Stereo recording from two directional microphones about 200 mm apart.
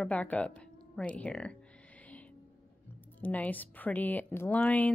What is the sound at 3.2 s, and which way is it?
Speech, 10° left (ahead or behind).